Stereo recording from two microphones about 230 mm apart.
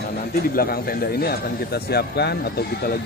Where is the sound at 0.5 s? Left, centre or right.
Left.